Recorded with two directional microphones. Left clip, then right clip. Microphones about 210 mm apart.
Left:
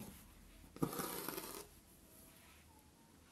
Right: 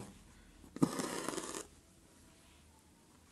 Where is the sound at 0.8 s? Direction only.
15° right (ahead or behind).